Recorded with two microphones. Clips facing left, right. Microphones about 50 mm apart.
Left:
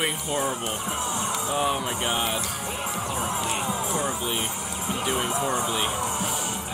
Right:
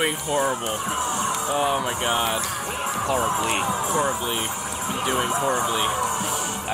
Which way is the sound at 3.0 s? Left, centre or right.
Right.